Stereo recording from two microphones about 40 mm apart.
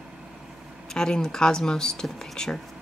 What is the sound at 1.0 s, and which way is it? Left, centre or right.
Speech, centre.